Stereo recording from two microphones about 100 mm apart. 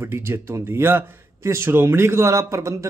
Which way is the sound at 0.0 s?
25° right (ahead or behind).